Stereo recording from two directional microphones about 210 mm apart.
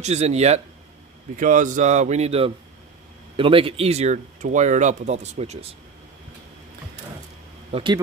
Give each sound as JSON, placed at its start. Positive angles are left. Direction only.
{"t": 0.0, "sound": "speech", "side_deg": -30}
{"t": 7.7, "sound": "speech", "side_deg": -20}